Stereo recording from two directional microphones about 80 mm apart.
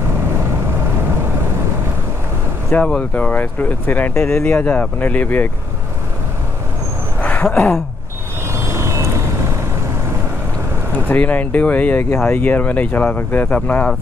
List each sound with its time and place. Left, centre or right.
2.7 s speech: centre
7.2 s a sound: centre
8.5 s vehicle: right
11.1 s speech: centre